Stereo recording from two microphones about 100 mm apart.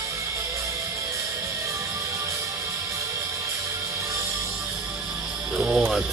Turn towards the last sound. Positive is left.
turn(degrees=-5)  # may be behind; listen again after turning